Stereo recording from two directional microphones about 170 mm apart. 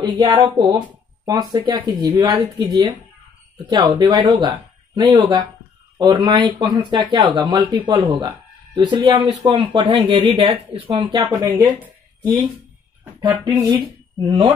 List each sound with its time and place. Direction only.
0.0 s speech: 25° right (ahead or behind)
11.3 s speech: 10° right (ahead or behind)
13.2 s speech: 25° right (ahead or behind)